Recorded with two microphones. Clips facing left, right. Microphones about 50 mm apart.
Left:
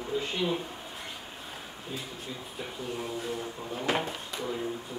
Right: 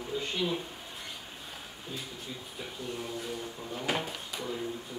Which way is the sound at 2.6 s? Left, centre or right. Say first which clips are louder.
Left 3 dB; centre.